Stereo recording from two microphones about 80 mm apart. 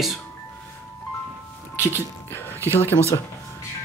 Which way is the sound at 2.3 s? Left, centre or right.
Left.